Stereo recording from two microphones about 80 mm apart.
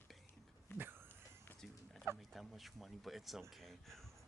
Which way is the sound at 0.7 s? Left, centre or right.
Left.